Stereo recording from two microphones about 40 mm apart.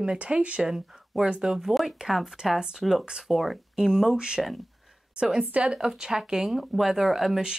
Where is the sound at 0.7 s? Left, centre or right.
Centre.